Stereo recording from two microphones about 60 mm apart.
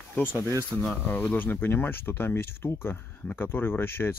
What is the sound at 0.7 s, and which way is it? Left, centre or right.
Speech, left.